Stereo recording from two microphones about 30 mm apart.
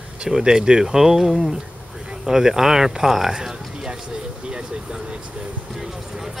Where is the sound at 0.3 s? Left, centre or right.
Centre.